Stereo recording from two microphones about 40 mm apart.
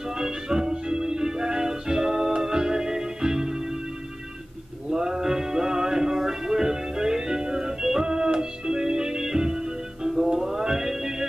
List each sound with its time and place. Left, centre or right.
0.1 s music: centre
4.8 s music: centre